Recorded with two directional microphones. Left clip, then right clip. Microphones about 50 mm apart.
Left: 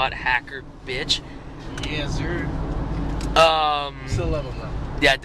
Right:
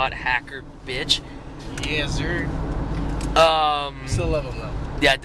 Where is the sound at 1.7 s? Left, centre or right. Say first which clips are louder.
Right 3 dB; right.